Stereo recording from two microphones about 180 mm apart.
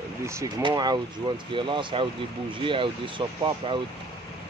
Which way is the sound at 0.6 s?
20° right (ahead or behind).